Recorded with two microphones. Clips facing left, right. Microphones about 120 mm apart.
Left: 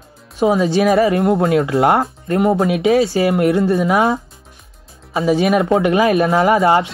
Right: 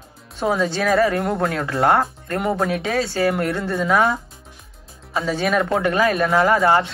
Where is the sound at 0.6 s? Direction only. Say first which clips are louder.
Left 5 dB; 20° left (ahead or behind).